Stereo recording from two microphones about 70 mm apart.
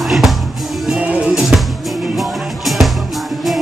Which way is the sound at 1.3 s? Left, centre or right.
Centre.